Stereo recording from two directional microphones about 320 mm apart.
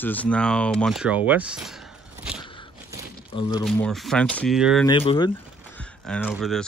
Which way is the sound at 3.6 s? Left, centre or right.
Centre.